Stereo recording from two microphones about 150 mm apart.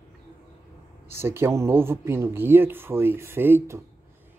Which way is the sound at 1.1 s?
15° right (ahead or behind).